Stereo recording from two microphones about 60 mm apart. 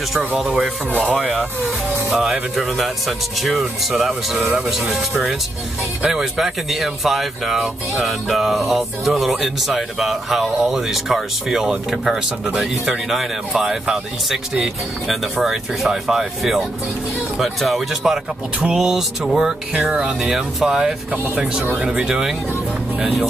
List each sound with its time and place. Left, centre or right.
0.9 s speech: right
2.0 s speech: centre
21.1 s speech: centre
22.0 s speech: centre